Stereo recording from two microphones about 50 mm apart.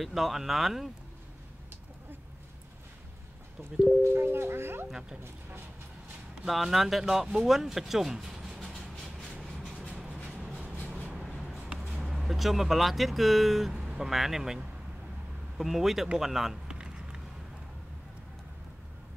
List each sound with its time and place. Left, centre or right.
0.0 s speech: centre
4.1 s speech: right
6.4 s speech: centre
7.3 s a sound: centre
9.6 s vehicle: centre
11.9 s speech: centre
16.6 s a sound: centre